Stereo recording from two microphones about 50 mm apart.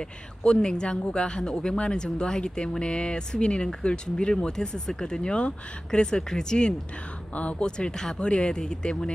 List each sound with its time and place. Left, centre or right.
0.4 s speech: centre